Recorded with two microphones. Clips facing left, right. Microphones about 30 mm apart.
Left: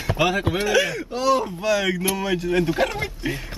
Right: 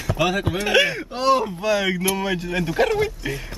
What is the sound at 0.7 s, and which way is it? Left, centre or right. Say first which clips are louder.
Speech: right 4 dB; right.